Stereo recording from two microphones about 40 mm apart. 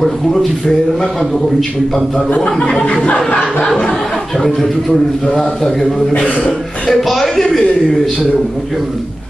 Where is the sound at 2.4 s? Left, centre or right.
Centre.